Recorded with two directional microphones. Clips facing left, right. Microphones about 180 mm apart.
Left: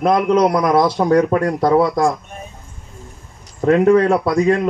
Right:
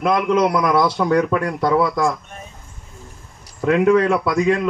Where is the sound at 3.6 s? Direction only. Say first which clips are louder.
Left 3 dB; 40° left (ahead or behind).